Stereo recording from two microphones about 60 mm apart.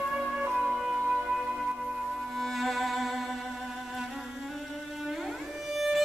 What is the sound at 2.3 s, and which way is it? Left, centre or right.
Music, centre.